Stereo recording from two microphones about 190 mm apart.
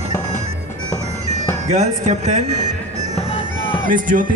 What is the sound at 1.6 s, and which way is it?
Speech, 35° right (ahead or behind).